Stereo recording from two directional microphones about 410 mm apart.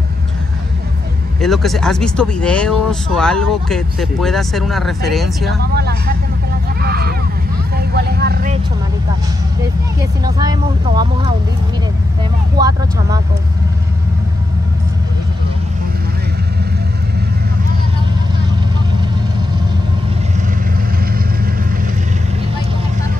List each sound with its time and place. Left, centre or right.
1.4 s speech: centre
5.8 s speech: right
6.8 s a sound: right
7.7 s vehicle: right
10.2 s speech: centre
12.5 s speech: centre